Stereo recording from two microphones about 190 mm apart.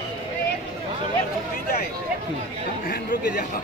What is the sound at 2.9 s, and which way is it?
Chatter, 55° left (ahead or behind).